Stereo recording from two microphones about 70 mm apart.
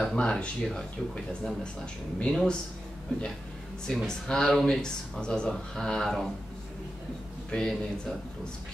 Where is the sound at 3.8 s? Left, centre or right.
Centre.